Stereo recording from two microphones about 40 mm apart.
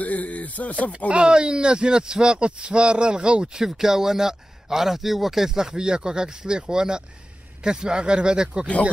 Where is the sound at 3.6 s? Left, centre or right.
Centre.